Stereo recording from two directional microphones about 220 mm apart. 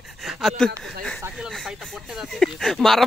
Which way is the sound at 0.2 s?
Centre (ahead or behind).